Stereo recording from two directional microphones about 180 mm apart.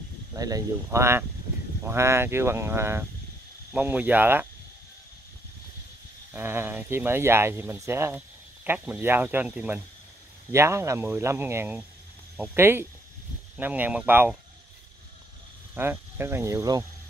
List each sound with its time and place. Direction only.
0.3 s speech: 20° right (ahead or behind)
6.3 s speech: 10° right (ahead or behind)
15.7 s speech: 15° right (ahead or behind)